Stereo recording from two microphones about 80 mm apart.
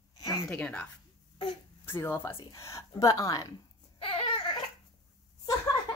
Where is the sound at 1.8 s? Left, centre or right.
Left.